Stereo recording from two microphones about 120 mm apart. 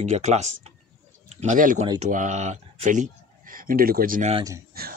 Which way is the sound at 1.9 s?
90° right.